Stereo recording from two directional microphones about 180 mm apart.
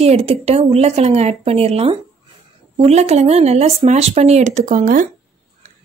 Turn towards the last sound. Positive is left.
turn(degrees=-45)  # may be behind; listen again after turning